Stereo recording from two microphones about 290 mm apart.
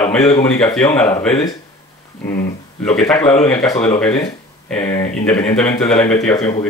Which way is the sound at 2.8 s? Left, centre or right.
Centre.